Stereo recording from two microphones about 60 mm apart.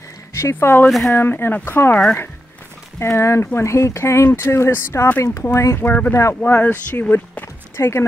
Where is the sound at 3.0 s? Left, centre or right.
Left.